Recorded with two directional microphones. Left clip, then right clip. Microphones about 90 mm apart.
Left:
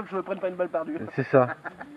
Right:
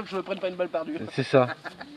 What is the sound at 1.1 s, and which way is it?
Speech, 10° right (ahead or behind).